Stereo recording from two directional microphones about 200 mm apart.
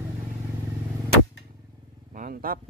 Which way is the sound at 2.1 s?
45° right (ahead or behind).